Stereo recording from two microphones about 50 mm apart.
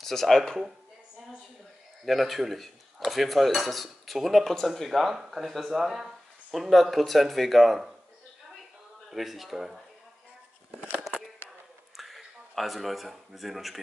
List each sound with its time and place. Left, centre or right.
0.0 s speech: centre
2.0 s speech: centre
9.1 s speech: centre
10.7 s a sound: right
12.0 s speech: centre